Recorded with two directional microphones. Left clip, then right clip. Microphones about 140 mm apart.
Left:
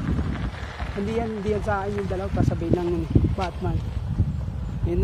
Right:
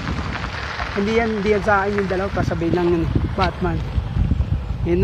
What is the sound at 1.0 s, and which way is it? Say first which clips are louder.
Speech: right 8 dB; 5° right (ahead or behind).